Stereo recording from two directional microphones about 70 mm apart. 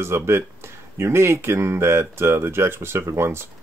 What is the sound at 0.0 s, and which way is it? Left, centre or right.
Speech, right.